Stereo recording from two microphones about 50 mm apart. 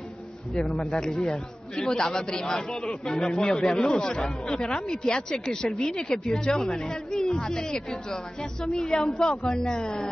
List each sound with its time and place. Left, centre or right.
0.6 s a woman's voice: centre
3.4 s a woman's voice: centre
3.7 s a woman's voice: centre
8.8 s a woman's voice: centre
9.2 s a woman's voice: centre